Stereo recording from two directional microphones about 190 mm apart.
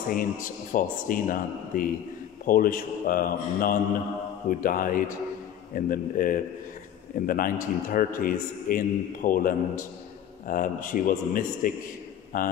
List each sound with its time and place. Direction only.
0.1 s a man's voice: 45° left (ahead or behind)